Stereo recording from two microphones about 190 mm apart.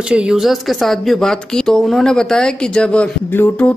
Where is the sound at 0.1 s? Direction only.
5° right (ahead or behind).